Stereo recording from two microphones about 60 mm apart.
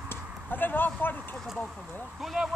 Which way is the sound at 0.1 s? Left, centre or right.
Left.